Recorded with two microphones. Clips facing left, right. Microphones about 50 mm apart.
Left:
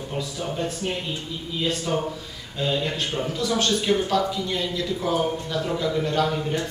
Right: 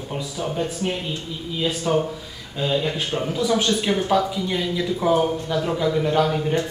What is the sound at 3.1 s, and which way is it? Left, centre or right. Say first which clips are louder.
Speech: right 5 dB; centre.